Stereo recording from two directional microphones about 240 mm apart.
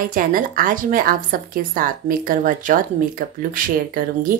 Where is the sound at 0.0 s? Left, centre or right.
Right.